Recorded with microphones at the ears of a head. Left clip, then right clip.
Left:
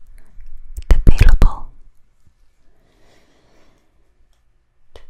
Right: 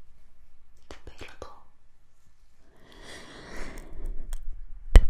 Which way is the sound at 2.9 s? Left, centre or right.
Right.